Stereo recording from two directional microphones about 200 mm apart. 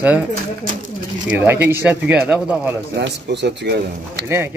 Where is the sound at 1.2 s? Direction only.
10° right (ahead or behind).